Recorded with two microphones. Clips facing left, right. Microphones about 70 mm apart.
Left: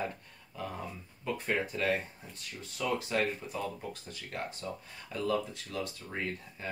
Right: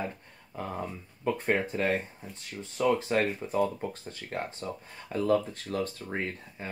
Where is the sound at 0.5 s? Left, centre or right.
Right.